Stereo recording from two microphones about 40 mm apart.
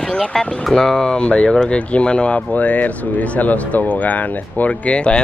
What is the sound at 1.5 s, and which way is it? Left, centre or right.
Speech, centre.